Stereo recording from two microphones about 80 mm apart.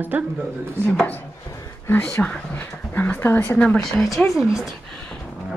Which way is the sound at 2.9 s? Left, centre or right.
Left.